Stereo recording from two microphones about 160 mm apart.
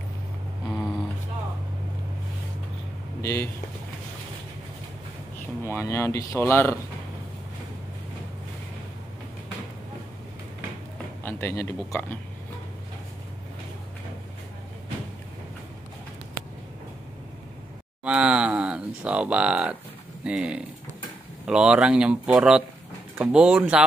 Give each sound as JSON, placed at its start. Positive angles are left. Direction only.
{"t": 3.2, "sound": "speech", "side_deg": 20}
{"t": 5.7, "sound": "speech", "side_deg": 15}
{"t": 11.2, "sound": "speech", "side_deg": 15}
{"t": 18.0, "sound": "speech", "side_deg": -5}